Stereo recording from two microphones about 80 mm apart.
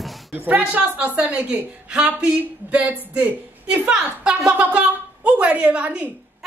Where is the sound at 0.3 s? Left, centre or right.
Right.